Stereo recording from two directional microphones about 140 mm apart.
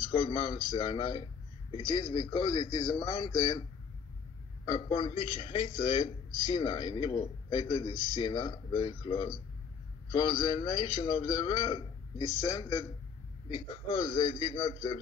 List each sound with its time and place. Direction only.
0.1 s a man's voice: 35° left (ahead or behind)
4.6 s a man's voice: 35° left (ahead or behind)
5.8 s a man's voice: 30° left (ahead or behind)
13.5 s a man's voice: 40° left (ahead or behind)